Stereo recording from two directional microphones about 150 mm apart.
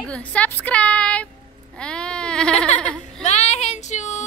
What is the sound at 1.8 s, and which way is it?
Goat, 5° left (ahead or behind).